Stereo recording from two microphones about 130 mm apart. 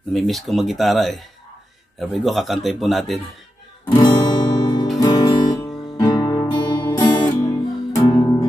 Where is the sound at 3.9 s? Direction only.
30° left (ahead or behind).